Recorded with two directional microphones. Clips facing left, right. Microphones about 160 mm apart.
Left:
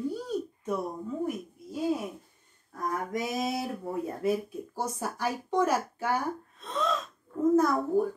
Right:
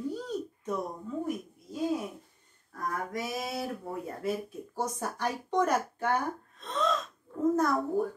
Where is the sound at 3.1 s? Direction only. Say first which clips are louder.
Left 4 dB; 20° left (ahead or behind).